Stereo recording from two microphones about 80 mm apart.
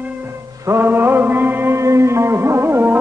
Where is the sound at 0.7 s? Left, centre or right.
Right.